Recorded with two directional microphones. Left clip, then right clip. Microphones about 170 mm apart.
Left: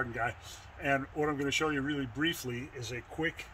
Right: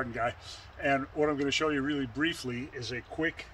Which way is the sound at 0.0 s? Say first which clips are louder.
Right 2 dB; 20° right (ahead or behind).